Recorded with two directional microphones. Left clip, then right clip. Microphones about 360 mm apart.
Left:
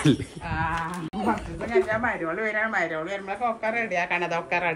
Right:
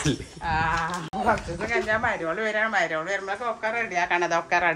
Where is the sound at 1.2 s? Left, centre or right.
Right.